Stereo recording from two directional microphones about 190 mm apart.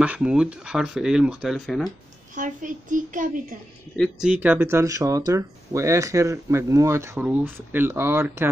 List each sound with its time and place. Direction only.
0.0 s speech: 5° right (ahead or behind)
2.3 s a child's voice: 45° right (ahead or behind)
3.9 s speech: centre (ahead or behind)